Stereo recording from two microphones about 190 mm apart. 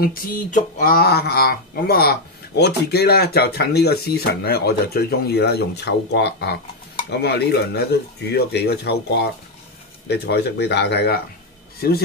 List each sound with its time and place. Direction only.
0.0 s speech: 50° left (ahead or behind)